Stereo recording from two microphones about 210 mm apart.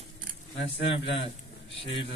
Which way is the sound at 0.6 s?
25° left (ahead or behind).